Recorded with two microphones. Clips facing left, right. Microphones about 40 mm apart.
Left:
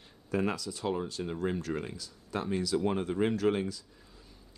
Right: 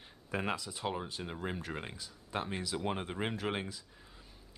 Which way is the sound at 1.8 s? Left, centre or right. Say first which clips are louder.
Left 5 dB; right.